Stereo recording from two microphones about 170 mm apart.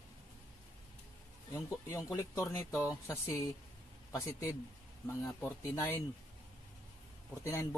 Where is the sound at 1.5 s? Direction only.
15° left (ahead or behind).